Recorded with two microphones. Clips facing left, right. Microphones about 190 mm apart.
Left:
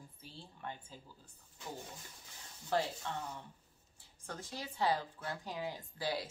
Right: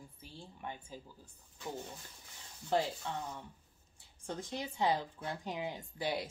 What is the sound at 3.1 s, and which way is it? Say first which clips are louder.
Speech: right 1 dB; 10° right (ahead or behind).